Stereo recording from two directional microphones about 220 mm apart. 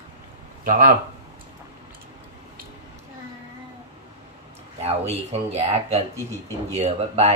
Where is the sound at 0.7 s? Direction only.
35° right (ahead or behind).